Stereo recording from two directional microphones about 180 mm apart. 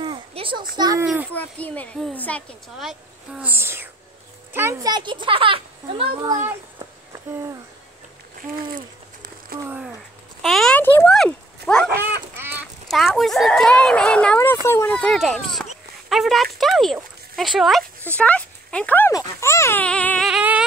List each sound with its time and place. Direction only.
0.0 s a sound: 30° right (ahead or behind)
0.7 s a child's voice: 20° right (ahead or behind)
1.0 s speech: 10° right (ahead or behind)
1.3 s a child's voice: 10° left (ahead or behind); by 6.3 s 30° right (ahead or behind)
6.4 s a sound: 15° right (ahead or behind)
8.4 s a sound: 50° right (ahead or behind)
9.6 s speech: 10° right (ahead or behind)
10.4 s a sound: centre (ahead or behind)
12.4 s fowl: 10° right (ahead or behind)
12.9 s speech: centre (ahead or behind)
15.0 s speech: centre (ahead or behind)
20.2 s music: 5° right (ahead or behind)